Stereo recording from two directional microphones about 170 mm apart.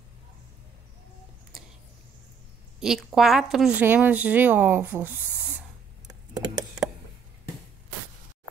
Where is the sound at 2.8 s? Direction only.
Centre (ahead or behind).